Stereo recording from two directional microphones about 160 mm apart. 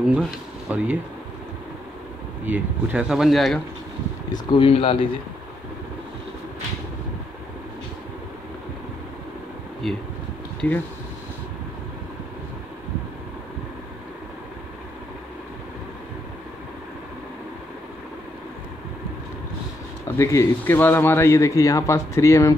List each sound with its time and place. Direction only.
0.0 s speech: 5° right (ahead or behind)
2.4 s speech: 10° right (ahead or behind)
4.3 s speech: 30° left (ahead or behind)
9.8 s speech: centre (ahead or behind)
20.2 s speech: 15° left (ahead or behind)